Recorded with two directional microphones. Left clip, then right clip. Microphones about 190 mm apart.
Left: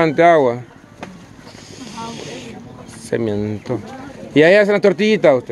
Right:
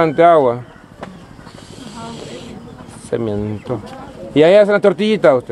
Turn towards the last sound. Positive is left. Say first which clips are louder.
# right 1 dB
turn(degrees=5)  # may be behind; listen again after turning